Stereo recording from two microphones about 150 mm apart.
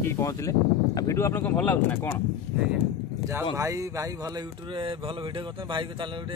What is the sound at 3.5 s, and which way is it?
Speech, 20° right (ahead or behind).